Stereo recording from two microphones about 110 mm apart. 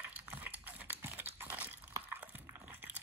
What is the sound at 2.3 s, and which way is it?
Biting, 15° right (ahead or behind).